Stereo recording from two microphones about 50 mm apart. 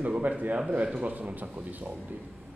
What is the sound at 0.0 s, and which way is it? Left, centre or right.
Speech, right.